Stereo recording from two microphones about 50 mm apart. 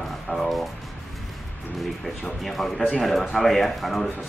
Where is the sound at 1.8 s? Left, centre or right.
Centre.